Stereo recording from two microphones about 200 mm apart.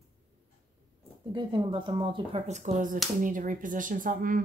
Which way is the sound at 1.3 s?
25° right (ahead or behind).